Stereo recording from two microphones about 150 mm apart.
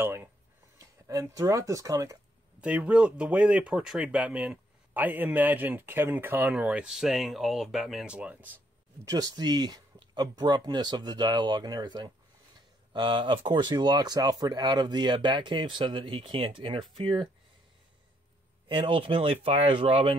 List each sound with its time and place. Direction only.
0.0 s speech: 15° right (ahead or behind)
2.6 s speech: 10° right (ahead or behind)
9.0 s speech: 25° right (ahead or behind)
18.7 s speech: 35° right (ahead or behind)